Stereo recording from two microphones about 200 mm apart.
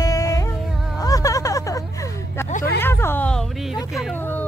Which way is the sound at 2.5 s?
40° left (ahead or behind).